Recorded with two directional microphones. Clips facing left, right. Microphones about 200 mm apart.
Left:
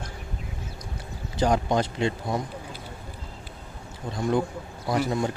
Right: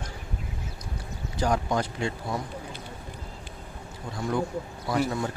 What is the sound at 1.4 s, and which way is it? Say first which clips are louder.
Speech: left 3 dB; 25° left (ahead or behind).